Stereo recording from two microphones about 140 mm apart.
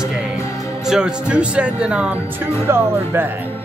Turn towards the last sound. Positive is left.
turn(degrees=-15)  # may be behind; listen again after turning